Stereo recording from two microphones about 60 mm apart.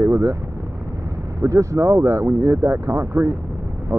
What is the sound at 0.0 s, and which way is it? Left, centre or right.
Vehicle, right.